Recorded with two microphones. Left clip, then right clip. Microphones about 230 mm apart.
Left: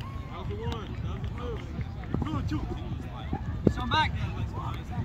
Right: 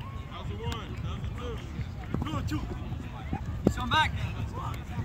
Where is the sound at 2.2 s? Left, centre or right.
Right.